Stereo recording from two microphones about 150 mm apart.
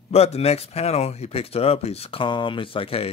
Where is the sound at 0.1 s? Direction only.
45° left (ahead or behind).